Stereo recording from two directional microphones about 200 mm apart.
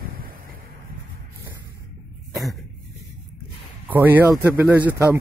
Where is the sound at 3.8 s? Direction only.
10° right (ahead or behind).